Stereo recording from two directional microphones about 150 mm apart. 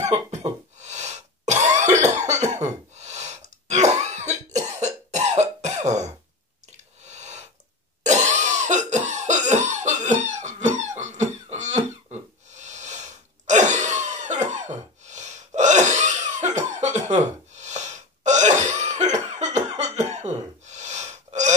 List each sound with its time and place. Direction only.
0.7 s cough: 50° right (ahead or behind)
7.0 s a sound: 50° right (ahead or behind)
8.0 s cough: 50° right (ahead or behind)